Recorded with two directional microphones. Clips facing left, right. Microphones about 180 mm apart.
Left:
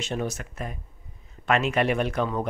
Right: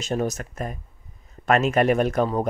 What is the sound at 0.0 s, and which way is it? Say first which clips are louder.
Speech: right 4 dB; 40° right (ahead or behind).